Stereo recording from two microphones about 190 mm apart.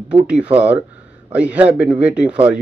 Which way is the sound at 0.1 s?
5° right (ahead or behind).